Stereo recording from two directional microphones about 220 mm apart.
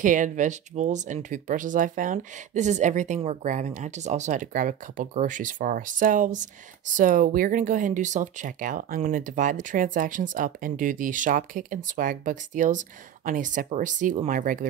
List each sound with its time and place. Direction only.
0.0 s speech: 35° right (ahead or behind)